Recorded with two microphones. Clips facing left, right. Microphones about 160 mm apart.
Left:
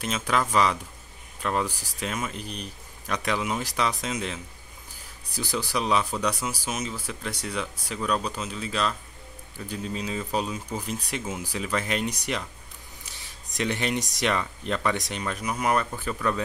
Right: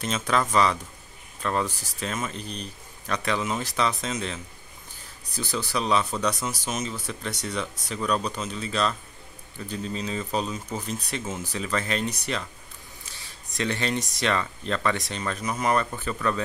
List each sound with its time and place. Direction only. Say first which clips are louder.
0.0 s speech: right 1 dB; 10° left (ahead or behind)
13.6 s speech: even; 15° left (ahead or behind)